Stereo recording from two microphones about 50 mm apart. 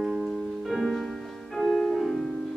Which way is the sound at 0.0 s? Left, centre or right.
Centre.